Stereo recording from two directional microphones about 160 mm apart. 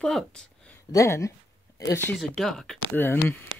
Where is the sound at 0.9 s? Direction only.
20° left (ahead or behind).